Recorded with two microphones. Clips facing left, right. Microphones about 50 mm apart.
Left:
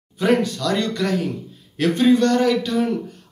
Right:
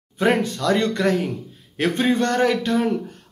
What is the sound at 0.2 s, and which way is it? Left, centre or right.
Speech, right.